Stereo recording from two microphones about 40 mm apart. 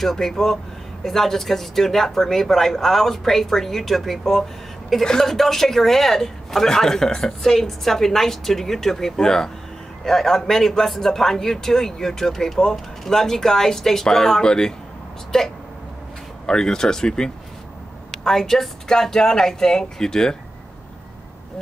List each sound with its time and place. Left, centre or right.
0.0 s a man's voice: centre